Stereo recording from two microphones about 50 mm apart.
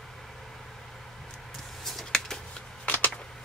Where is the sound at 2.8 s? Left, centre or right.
Left.